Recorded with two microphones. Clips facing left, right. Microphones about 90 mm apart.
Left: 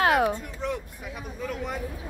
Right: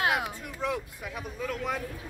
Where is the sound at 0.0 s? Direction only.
45° left (ahead or behind).